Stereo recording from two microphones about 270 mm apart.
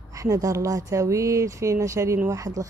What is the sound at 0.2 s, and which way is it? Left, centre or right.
A woman's voice, centre.